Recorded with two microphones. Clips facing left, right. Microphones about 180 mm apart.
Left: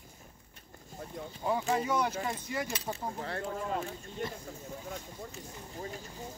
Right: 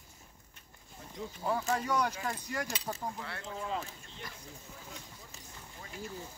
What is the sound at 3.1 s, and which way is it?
Speech, 40° left (ahead or behind).